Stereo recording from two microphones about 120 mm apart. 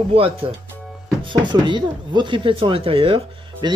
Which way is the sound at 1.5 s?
40° right (ahead or behind).